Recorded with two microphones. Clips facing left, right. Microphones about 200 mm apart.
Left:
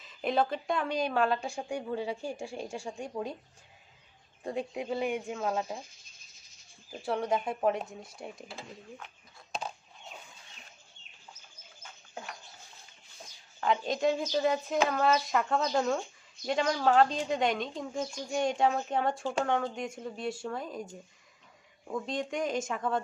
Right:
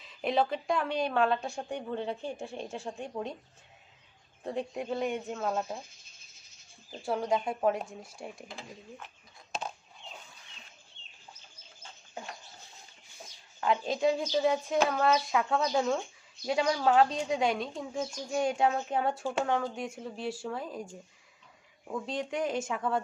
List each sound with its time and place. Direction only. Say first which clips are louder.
0.0 s a woman's voice: even; centre (ahead or behind)
4.4 s a woman's voice: even; centre (ahead or behind)
7.1 s a woman's voice: even; centre (ahead or behind)
8.9 s a sound: even; centre (ahead or behind)
11.0 s bird: right 2 dB; 30° right (ahead or behind)
13.2 s a woman's voice: even; 5° right (ahead or behind)